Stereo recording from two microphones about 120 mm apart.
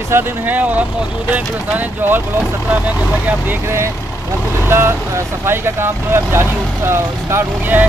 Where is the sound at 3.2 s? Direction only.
20° right (ahead or behind).